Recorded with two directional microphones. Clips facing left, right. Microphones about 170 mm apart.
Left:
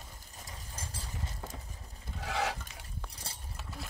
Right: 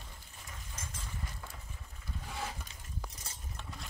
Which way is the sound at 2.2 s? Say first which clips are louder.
Left 8 dB; 85° left.